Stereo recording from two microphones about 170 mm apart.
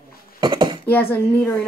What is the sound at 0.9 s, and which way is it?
Speech, 15° left (ahead or behind).